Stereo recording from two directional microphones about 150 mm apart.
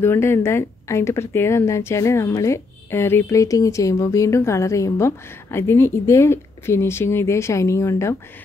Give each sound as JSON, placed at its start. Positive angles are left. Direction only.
{"t": 0.0, "sound": "speech", "side_deg": 15}